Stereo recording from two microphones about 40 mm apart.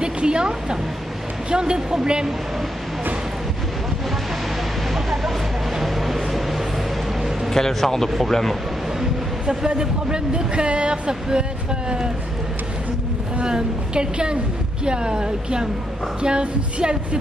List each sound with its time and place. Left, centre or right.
0.0 s speech: right
4.9 s vehicle: centre
7.4 s speech: centre
9.8 s speech: centre
13.4 s speech: right